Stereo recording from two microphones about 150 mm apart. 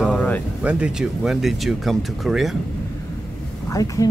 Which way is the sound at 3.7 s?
25° left (ahead or behind).